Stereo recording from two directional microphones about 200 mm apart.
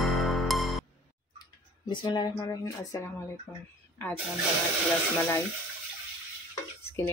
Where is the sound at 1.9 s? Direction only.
25° left (ahead or behind).